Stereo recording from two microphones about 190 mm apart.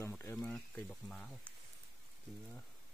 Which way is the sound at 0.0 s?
15° left (ahead or behind).